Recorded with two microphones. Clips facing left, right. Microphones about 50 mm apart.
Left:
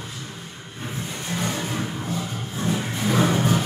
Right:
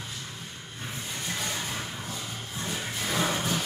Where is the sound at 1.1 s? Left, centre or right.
Centre.